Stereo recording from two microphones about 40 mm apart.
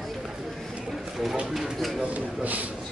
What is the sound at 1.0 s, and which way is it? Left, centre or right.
Bird, centre.